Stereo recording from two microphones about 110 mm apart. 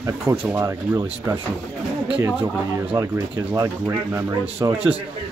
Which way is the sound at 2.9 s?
30° right (ahead or behind).